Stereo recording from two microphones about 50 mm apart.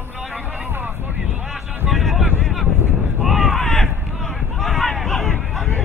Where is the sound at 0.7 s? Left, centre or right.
Right.